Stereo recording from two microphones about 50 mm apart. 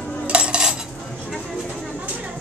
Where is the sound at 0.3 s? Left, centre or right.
Centre.